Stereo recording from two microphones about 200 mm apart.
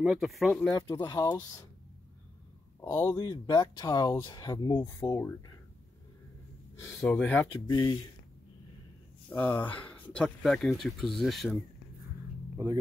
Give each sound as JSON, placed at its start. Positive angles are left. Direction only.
{"t": 0.0, "sound": "speech", "side_deg": 0}
{"t": 0.7, "sound": "speech", "side_deg": 20}
{"t": 2.8, "sound": "speech", "side_deg": 15}
{"t": 6.9, "sound": "speech", "side_deg": 5}
{"t": 7.7, "sound": "speech", "side_deg": 20}
{"t": 9.3, "sound": "speech", "side_deg": 10}